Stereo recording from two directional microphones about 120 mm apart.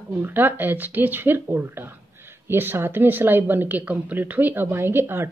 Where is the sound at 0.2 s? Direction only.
15° right (ahead or behind).